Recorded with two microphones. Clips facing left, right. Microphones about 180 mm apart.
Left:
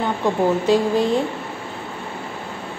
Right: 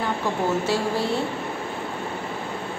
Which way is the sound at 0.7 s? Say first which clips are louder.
Left 6 dB; 15° left (ahead or behind).